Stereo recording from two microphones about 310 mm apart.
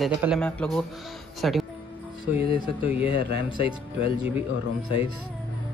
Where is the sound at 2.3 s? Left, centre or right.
Centre.